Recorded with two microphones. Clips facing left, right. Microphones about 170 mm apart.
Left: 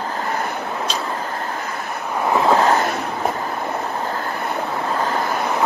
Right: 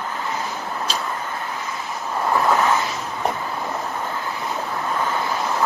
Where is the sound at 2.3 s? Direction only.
20° left (ahead or behind).